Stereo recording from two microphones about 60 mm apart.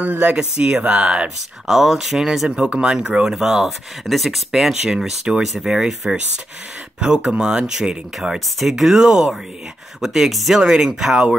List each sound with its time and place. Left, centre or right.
0.0 s speech: right
0.4 s speech: centre
1.7 s speech: centre